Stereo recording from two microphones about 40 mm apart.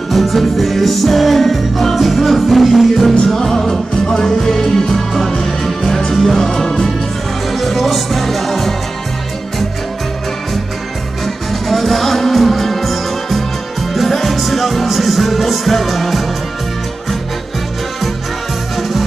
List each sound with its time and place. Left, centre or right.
0.1 s music: centre
11.7 s music: centre